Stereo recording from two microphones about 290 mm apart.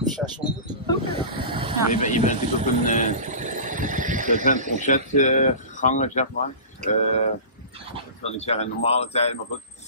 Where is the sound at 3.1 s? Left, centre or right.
Right.